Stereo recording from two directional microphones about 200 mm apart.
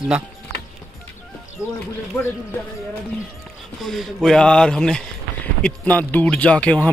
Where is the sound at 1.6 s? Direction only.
Centre (ahead or behind).